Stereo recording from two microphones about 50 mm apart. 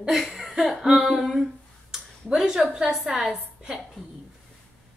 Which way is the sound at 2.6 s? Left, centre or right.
Centre.